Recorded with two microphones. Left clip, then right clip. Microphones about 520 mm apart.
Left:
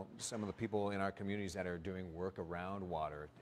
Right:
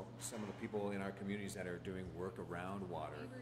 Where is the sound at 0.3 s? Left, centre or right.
Left.